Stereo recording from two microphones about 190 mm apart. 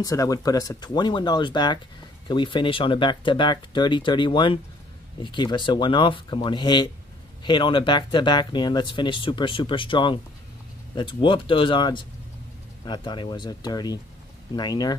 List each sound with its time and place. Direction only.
0.0 s speech: 20° left (ahead or behind)